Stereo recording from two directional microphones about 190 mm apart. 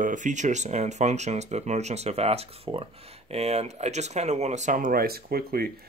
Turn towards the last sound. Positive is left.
turn(degrees=-50)  # may be behind; listen again after turning